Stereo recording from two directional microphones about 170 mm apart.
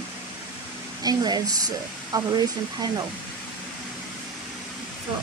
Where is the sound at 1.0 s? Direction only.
25° right (ahead or behind).